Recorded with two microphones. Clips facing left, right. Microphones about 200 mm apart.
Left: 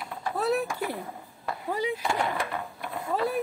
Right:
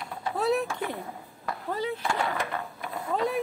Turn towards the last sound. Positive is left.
turn(degrees=5)  # may be behind; listen again after turning